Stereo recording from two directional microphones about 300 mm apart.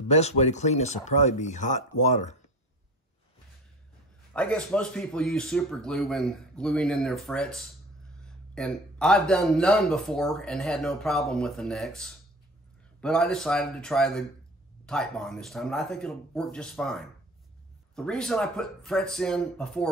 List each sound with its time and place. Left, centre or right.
0.1 s speech: left
4.3 s speech: centre